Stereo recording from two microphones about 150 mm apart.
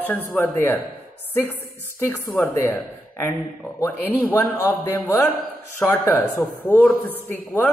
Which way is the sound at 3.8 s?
10° left (ahead or behind).